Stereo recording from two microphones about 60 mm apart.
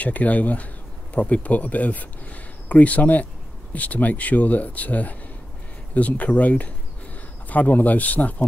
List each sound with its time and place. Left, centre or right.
0.0 s speech: left